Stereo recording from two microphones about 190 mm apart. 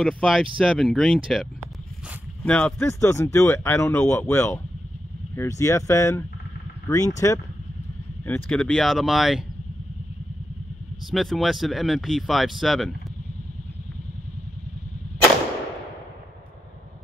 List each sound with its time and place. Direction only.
0.0 s speech: centre (ahead or behind); by 7.3 s 15° left (ahead or behind)
8.3 s speech: 5° left (ahead or behind)
11.1 s speech: centre (ahead or behind)